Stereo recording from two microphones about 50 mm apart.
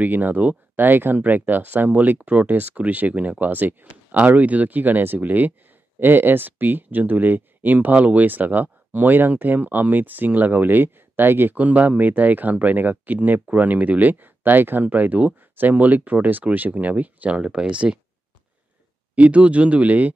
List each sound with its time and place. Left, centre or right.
0.0 s speech: right
4.2 s speech: right
19.1 s speech: right